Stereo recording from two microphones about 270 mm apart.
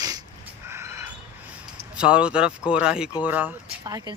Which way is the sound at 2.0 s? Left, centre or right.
Centre.